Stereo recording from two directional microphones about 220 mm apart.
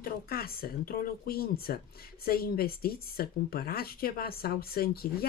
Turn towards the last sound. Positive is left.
turn(degrees=45)  # may be behind; listen again after turning